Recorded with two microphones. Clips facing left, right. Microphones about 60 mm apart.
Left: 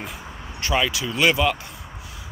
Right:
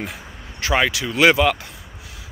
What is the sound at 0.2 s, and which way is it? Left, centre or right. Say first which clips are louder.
Vehicle: left 2 dB; centre.